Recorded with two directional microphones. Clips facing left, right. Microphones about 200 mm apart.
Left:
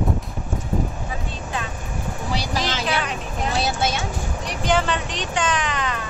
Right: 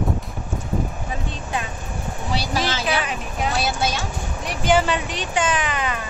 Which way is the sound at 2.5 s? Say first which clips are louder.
Right 2 dB; 5° right (ahead or behind).